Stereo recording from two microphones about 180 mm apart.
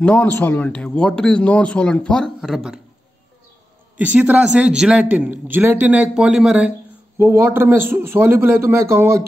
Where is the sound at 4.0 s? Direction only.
10° right (ahead or behind).